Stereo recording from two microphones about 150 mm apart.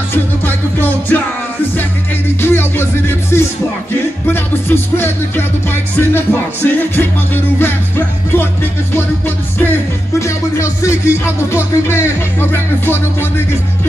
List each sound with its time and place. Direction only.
0.1 s music: 15° left (ahead or behind)
2.4 s music: 15° left (ahead or behind)
9.6 s music: 15° left (ahead or behind)